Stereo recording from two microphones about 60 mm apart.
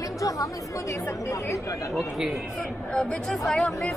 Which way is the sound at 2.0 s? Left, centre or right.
Centre.